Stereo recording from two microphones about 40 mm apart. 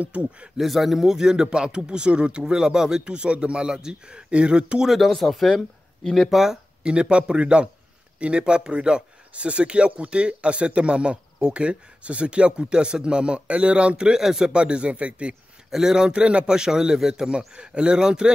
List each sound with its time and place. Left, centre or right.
0.0 s a man's voice: right
0.6 s speech: centre; by 4.8 s right
4.8 s speech: centre
6.0 s speech: centre
6.3 s a man's voice: centre
6.8 s speech: right
14.2 s a man's voice: centre
14.5 s speech: right
15.7 s a man's voice: centre